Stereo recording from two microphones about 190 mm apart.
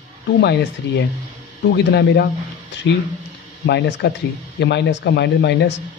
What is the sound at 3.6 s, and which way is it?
A man's voice, 65° left (ahead or behind).